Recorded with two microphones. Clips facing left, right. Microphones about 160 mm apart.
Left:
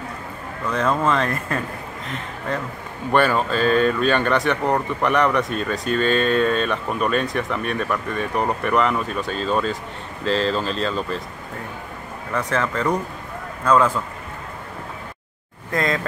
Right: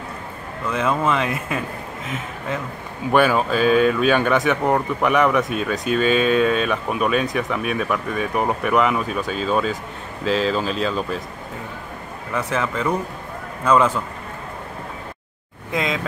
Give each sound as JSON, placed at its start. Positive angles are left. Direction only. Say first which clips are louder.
{"t": 0.7, "sound": "speech", "louder": "even", "side_deg": -5}
{"t": 12.3, "sound": "speech", "louder": "even", "side_deg": -5}
{"t": 15.7, "sound": "speech", "louder": "left 1 dB", "side_deg": -10}